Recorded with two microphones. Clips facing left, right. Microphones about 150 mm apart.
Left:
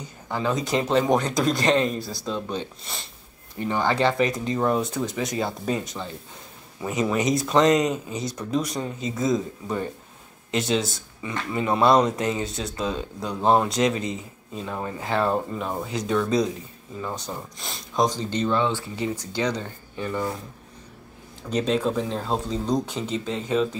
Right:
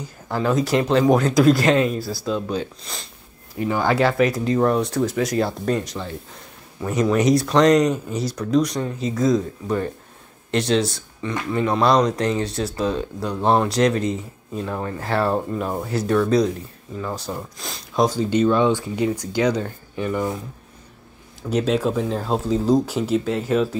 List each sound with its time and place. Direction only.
0.3 s speech: 5° right (ahead or behind)
15.0 s speech: 5° right (ahead or behind)
21.4 s speech: 10° right (ahead or behind)